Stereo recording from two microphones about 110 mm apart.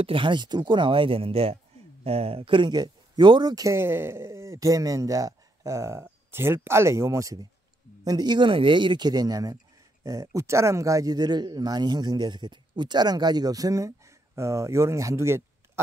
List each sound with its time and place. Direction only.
0.0 s speech: 50° right (ahead or behind); by 15.8 s 25° right (ahead or behind)